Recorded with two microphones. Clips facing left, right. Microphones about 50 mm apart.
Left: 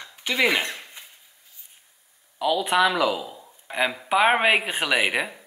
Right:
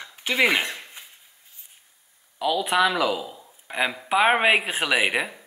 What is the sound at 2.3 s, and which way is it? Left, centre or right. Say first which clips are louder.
Speech: left 1 dB; centre.